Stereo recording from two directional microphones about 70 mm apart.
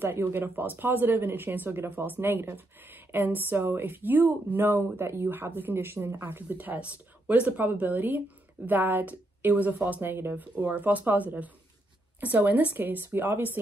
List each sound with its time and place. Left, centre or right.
0.0 s speech: right